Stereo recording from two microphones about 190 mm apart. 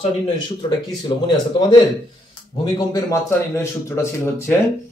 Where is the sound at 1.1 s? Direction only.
25° left (ahead or behind).